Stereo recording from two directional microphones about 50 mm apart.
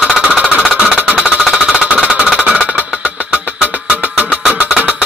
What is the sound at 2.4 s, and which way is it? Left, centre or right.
Music, right.